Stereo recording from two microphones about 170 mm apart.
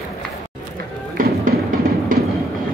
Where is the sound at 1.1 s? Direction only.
55° right (ahead or behind).